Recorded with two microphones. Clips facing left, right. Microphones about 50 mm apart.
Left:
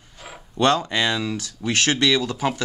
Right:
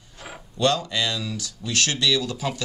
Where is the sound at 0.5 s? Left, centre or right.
Left.